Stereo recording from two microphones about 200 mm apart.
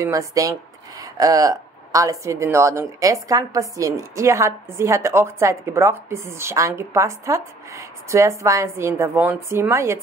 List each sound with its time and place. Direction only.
0.0 s a woman's voice: 15° right (ahead or behind)